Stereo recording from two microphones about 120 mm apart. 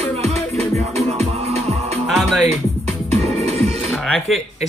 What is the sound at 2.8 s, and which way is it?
Music, 60° right (ahead or behind).